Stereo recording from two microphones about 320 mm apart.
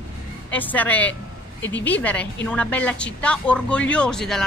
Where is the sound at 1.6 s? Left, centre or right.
Left.